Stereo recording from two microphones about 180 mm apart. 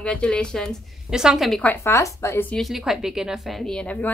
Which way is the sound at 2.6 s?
Centre (ahead or behind).